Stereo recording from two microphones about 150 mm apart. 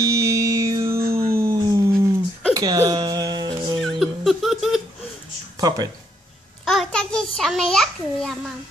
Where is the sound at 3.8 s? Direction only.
Centre (ahead or behind).